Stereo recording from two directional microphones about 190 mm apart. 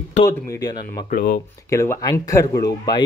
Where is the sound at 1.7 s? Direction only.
15° left (ahead or behind).